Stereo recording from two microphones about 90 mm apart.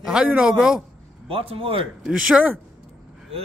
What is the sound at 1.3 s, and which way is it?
Speech, 90° right.